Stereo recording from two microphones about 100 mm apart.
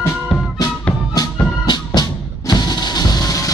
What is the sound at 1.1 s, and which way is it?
Music, 45° left (ahead or behind).